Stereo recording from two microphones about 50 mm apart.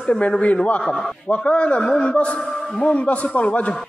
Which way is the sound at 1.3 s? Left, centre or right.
Left.